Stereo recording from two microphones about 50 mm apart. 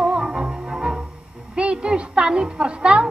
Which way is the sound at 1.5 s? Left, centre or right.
Right.